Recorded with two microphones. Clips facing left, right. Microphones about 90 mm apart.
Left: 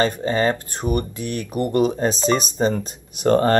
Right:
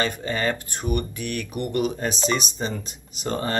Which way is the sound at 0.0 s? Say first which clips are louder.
Left 6 dB; 30° left (ahead or behind).